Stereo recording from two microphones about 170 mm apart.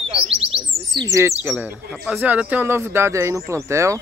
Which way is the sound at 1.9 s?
Centre (ahead or behind).